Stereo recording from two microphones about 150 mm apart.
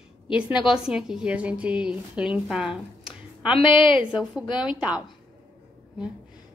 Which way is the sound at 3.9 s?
35° left (ahead or behind).